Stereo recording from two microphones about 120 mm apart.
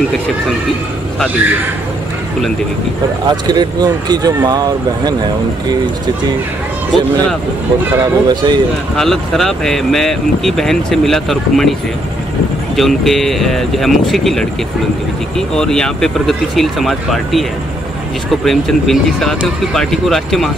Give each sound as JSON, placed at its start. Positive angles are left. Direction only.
{"t": 3.3, "sound": "speech", "side_deg": -35}
{"t": 8.0, "sound": "speech", "side_deg": -35}
{"t": 8.9, "sound": "speech", "side_deg": 0}
{"t": 12.7, "sound": "speech", "side_deg": 0}